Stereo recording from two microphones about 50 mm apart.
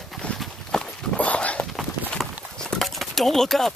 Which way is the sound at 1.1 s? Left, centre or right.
Left.